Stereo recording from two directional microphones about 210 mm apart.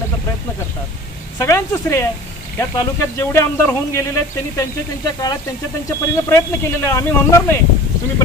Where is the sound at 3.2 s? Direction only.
15° left (ahead or behind).